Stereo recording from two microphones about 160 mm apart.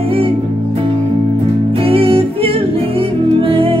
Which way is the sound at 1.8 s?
35° right (ahead or behind).